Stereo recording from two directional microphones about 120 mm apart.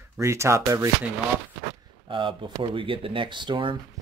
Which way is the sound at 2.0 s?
45° right (ahead or behind).